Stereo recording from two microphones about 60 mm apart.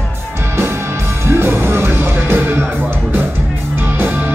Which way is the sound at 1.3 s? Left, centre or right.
Right.